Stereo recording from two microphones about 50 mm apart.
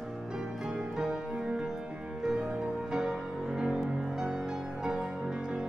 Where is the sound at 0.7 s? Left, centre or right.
Centre.